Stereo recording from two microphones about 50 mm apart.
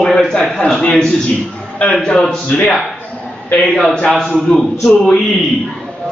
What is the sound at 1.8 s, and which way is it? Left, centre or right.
A man's voice, left.